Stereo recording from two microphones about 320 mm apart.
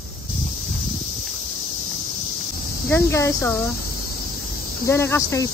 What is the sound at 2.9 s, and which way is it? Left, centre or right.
Speech, centre.